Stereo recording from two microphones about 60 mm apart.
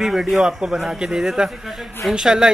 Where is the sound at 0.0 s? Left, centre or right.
Centre.